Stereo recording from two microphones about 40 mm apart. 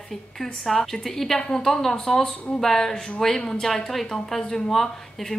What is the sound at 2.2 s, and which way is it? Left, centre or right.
Speech, left.